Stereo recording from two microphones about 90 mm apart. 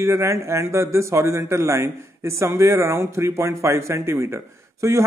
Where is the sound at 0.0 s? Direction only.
30° right (ahead or behind).